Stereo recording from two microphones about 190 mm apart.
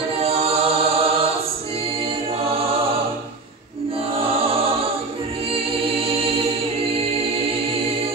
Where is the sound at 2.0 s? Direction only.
30° right (ahead or behind).